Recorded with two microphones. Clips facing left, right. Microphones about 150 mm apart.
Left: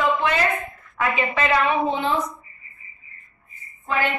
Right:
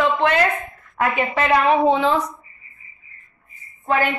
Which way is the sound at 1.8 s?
90° right.